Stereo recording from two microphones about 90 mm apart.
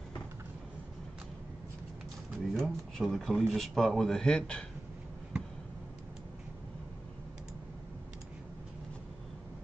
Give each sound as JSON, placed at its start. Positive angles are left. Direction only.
{"t": 2.5, "sound": "speech", "side_deg": 0}